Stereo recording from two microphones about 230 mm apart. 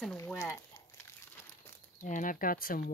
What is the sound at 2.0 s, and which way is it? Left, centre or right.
Speech, left.